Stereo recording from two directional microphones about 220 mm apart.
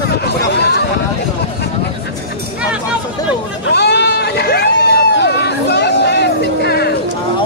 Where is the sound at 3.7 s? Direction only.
50° left (ahead or behind).